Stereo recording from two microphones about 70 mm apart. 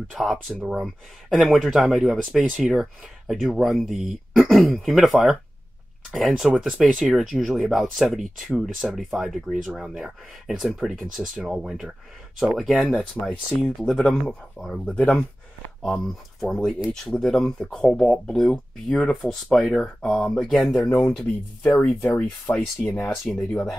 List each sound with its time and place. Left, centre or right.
0.2 s speech: centre
13.2 s speech: centre
15.0 s speech: left
16.3 s speech: centre
20.8 s speech: centre
21.7 s speech: left
23.3 s speech: centre